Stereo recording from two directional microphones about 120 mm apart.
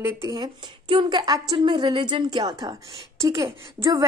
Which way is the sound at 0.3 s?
40° right (ahead or behind).